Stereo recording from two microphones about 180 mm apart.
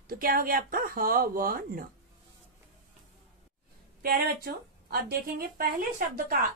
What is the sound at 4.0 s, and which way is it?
Speech, 55° right (ahead or behind).